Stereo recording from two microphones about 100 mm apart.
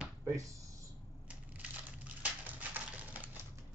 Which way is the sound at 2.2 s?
15° right (ahead or behind).